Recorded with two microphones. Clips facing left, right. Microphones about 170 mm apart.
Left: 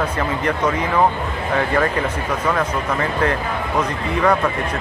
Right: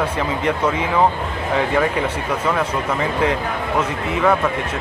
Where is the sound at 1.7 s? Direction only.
10° right (ahead or behind).